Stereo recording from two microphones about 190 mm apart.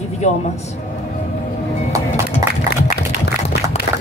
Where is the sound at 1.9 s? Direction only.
15° right (ahead or behind).